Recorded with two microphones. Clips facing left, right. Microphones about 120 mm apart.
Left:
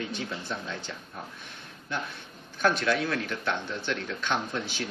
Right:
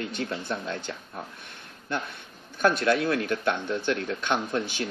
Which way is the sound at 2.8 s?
50° right (ahead or behind).